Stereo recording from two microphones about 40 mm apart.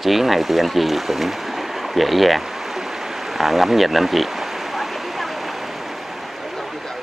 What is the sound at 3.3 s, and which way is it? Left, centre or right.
Stream, centre.